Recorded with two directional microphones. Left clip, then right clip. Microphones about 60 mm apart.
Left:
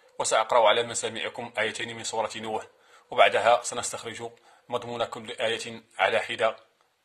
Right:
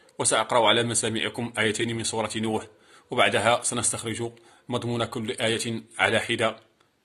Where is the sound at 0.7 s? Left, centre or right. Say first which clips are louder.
Right 1 dB; left.